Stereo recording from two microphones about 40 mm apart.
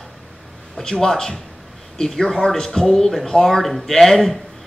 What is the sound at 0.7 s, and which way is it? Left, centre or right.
Speech, centre.